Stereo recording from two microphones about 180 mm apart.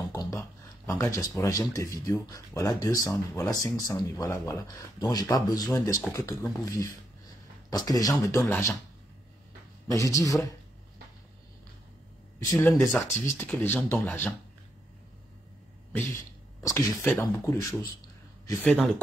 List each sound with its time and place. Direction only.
0.1 s speech: 20° left (ahead or behind)
9.8 s speech: 20° left (ahead or behind)
12.4 s speech: 20° left (ahead or behind); by 14.1 s centre (ahead or behind)
16.6 s speech: 15° left (ahead or behind)